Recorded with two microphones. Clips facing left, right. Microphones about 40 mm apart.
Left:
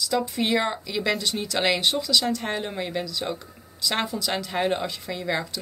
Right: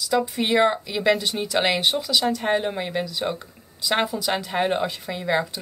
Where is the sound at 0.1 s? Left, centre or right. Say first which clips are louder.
Right 3 dB; centre.